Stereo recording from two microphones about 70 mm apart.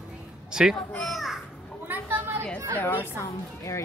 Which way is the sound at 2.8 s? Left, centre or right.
Left.